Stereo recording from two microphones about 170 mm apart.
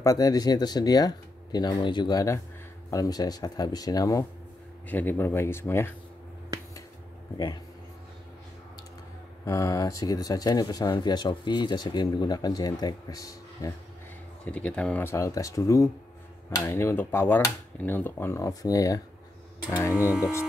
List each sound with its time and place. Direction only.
0.0 s speech: 20° left (ahead or behind)
7.3 s speech: 25° left (ahead or behind)
9.4 s speech: 15° left (ahead or behind)
14.4 s speech: 5° left (ahead or behind)